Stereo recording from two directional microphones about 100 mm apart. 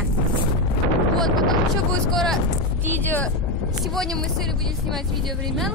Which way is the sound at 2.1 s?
5° left (ahead or behind).